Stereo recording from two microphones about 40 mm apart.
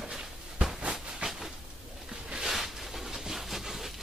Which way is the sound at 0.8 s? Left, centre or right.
Right.